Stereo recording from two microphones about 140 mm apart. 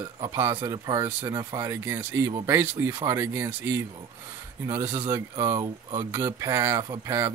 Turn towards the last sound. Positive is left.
turn(degrees=-25)  # may be behind; listen again after turning